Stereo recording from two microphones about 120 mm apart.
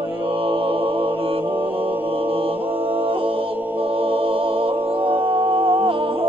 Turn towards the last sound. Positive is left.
turn(degrees=-50)  # may be behind; listen again after turning